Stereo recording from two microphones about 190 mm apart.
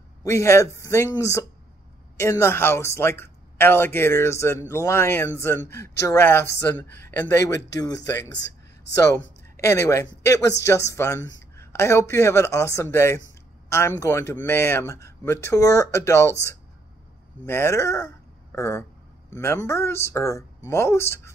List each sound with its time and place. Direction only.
0.2 s speech: 15° left (ahead or behind)
8.2 s a sound: 65° left (ahead or behind)
8.9 s speech: 15° left (ahead or behind)